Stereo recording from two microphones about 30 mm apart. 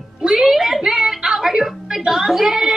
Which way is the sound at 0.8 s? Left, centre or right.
Centre.